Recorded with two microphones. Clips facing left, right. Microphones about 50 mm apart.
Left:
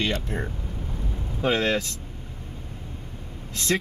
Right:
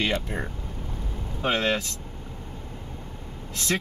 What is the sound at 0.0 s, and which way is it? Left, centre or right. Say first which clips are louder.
Speech: even; centre.